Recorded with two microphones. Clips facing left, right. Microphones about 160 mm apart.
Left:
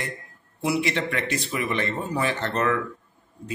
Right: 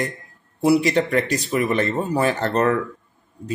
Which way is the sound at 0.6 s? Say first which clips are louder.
Right 8 dB; 40° right (ahead or behind).